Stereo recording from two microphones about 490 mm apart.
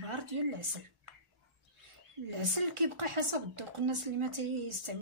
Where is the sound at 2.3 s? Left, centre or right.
Right.